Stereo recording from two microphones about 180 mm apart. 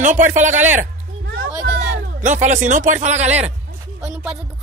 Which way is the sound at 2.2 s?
40° right (ahead or behind).